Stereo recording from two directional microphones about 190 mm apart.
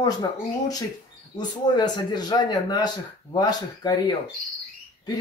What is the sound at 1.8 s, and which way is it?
A man's voice, 20° left (ahead or behind).